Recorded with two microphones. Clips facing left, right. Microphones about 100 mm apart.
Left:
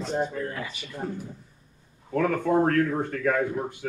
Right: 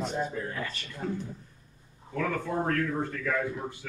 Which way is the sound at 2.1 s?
55° left (ahead or behind).